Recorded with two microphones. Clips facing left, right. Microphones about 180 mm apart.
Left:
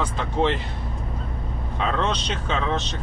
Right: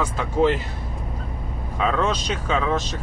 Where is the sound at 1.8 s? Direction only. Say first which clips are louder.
Right 3 dB; 5° right (ahead or behind).